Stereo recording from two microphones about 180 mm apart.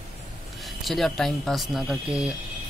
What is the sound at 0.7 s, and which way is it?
Speech, centre (ahead or behind).